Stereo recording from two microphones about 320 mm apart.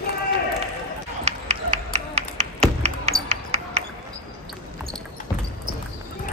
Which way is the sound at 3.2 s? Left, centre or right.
Centre.